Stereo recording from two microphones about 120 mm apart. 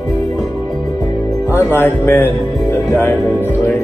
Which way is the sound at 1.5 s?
20° left (ahead or behind).